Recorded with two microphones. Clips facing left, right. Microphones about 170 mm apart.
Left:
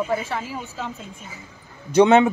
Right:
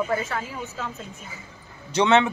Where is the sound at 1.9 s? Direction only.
50° left (ahead or behind).